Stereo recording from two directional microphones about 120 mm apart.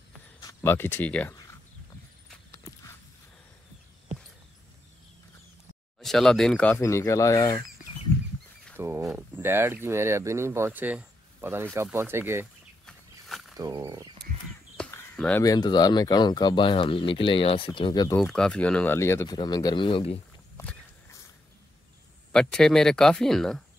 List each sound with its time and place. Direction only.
0.6 s speech: 20° left (ahead or behind)
2.5 s horse: 20° left (ahead or behind)
5.9 s speech: centre (ahead or behind)
6.8 s speech: 25° left (ahead or behind)
8.7 s speech: 20° right (ahead or behind)
12.8 s a sound: centre (ahead or behind)
13.6 s speech: 35° right (ahead or behind)
15.1 s speech: 10° left (ahead or behind)
15.4 s speech: 35° left (ahead or behind)
18.2 s speech: 5° left (ahead or behind)
18.9 s speech: 20° left (ahead or behind)
19.2 s speech: 35° left (ahead or behind)
20.6 s walk: 25° left (ahead or behind)
22.3 s speech: 5° left (ahead or behind)